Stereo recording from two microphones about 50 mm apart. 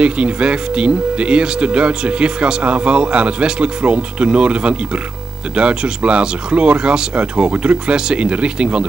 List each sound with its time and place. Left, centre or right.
0.0 s speech: right